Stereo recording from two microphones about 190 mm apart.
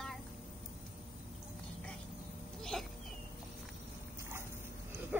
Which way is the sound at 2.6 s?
Centre (ahead or behind).